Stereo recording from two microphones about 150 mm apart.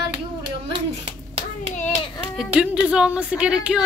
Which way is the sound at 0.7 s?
40° right (ahead or behind).